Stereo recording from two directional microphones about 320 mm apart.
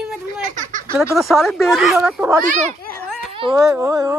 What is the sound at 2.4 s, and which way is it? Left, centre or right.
A child's voice, right.